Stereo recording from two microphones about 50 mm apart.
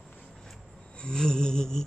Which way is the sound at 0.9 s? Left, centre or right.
Centre.